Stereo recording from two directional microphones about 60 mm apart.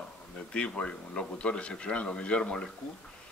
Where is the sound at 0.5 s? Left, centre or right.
Centre.